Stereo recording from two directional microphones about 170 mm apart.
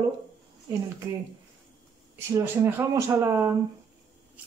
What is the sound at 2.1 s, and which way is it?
Speech, 15° right (ahead or behind).